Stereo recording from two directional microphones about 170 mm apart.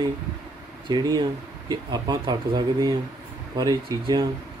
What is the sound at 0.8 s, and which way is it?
Speech, 25° right (ahead or behind).